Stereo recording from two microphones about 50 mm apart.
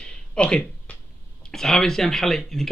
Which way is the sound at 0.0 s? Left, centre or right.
Left.